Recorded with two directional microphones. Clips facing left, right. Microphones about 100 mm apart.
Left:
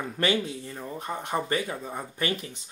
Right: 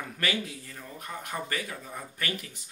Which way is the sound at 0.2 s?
25° left (ahead or behind).